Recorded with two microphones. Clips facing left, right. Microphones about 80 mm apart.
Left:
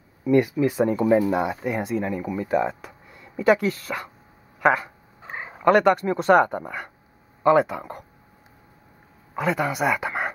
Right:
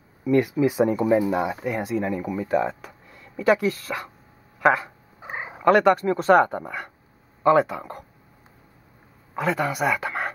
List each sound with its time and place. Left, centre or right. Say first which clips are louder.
0.2 s speech: left 1 dB; centre
0.6 s speech: right 1 dB; centre
5.2 s purr: right 2 dB; centre
5.6 s speech: even; centre
9.3 s speech: even; centre